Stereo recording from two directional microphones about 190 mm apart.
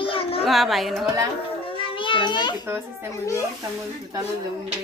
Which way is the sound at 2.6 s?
10° right (ahead or behind).